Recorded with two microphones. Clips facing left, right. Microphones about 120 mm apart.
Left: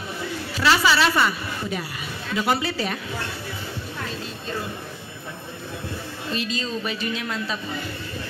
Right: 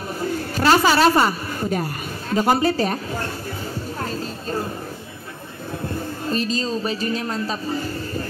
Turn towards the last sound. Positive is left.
turn(degrees=-35)  # may be behind; listen again after turning